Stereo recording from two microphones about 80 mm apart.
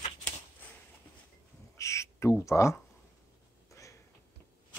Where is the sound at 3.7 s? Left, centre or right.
Left.